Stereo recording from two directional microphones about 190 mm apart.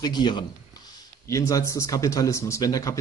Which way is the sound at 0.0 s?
25° left (ahead or behind).